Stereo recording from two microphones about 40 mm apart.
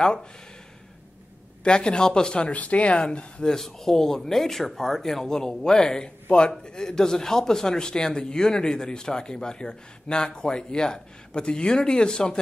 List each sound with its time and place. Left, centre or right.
1.6 s speech: left
2.5 s speech: left
3.5 s speech: centre